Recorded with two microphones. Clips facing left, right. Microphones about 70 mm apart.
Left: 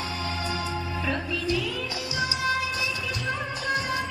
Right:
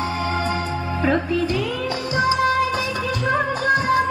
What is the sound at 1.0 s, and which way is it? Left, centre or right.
Music, right.